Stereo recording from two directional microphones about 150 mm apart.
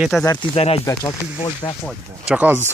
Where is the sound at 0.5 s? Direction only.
40° left (ahead or behind).